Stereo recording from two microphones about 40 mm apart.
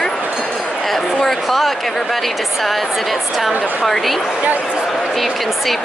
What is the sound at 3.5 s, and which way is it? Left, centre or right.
Speech, right.